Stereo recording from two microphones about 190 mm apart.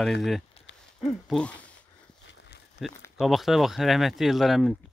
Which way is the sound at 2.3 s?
65° left (ahead or behind).